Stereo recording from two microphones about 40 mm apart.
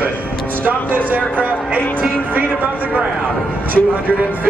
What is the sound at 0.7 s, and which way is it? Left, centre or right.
Speech, right.